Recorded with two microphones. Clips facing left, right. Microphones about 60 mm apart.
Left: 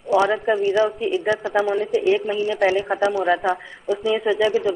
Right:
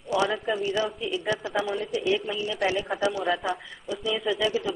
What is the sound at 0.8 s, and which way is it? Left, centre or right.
Speech, centre.